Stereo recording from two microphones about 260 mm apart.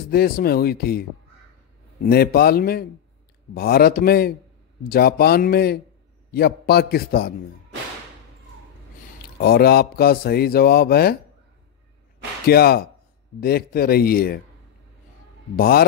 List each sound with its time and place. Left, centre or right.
0.1 s speech: left
2.0 s speech: left
9.2 s speech: left
12.4 s speech: left
15.5 s speech: left